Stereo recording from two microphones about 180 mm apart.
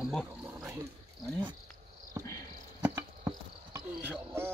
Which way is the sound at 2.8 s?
15° right (ahead or behind).